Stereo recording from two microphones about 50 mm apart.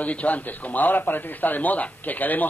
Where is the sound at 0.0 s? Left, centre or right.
Left.